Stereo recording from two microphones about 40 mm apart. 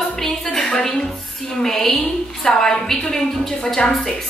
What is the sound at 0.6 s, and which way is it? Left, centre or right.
A woman's voice, centre.